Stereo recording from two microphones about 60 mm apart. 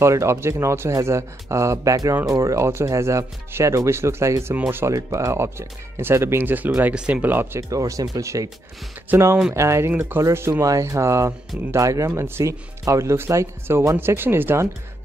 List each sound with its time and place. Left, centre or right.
0.0 s speech: right
4.8 s speech: right
7.7 s speech: right
9.1 s speech: right
9.5 s speech: right
10.1 s speech: right
10.6 s speech: right
13.9 s speech: right